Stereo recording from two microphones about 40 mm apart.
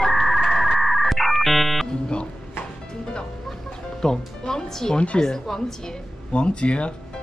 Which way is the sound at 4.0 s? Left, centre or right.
Centre.